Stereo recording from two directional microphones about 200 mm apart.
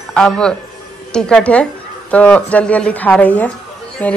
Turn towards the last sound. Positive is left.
turn(degrees=5)  # may be behind; listen again after turning